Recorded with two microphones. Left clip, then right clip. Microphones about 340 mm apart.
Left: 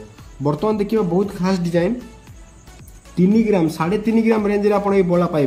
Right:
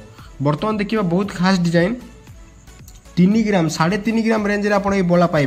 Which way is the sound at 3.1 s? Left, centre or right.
Centre.